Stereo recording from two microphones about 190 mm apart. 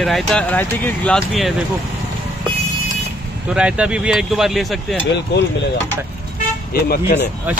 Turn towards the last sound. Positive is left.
turn(degrees=55)  # may be behind; listen again after turning